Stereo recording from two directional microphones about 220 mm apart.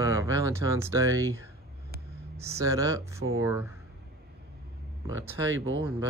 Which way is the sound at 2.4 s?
15° right (ahead or behind).